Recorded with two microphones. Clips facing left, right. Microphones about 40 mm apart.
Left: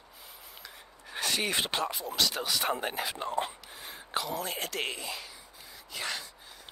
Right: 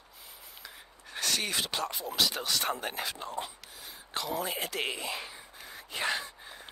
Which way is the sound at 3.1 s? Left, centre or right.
Left.